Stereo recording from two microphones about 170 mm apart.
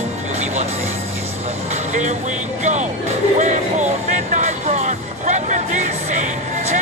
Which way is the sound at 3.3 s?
45° right (ahead or behind).